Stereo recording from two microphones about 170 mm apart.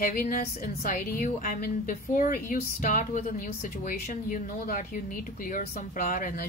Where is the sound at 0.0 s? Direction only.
55° left (ahead or behind).